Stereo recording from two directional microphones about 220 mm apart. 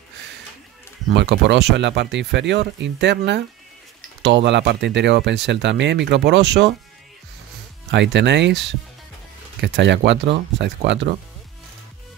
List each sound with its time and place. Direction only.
1.1 s speech: 50° right (ahead or behind)
7.9 s speech: 55° right (ahead or behind)